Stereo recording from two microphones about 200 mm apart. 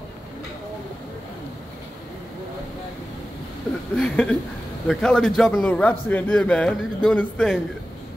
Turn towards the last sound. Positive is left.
turn(degrees=5)  # may be behind; listen again after turning